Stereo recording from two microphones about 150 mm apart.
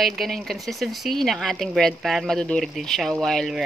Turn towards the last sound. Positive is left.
turn(degrees=0)  # may be behind; listen again after turning